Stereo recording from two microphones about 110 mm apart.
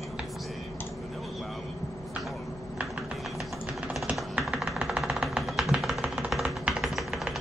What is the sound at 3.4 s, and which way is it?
Music, 5° right (ahead or behind).